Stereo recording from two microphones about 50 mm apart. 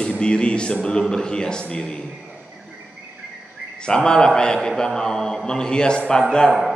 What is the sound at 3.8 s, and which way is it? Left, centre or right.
A man's voice, centre.